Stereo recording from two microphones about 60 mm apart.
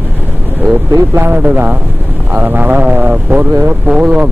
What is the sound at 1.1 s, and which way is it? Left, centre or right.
Speech, right.